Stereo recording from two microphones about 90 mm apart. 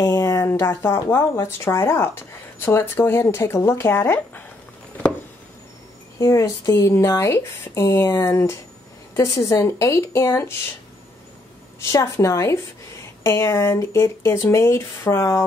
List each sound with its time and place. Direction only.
0.0 s speech: 35° left (ahead or behind)
6.1 s speech: 35° left (ahead or behind)
11.8 s speech: 35° left (ahead or behind)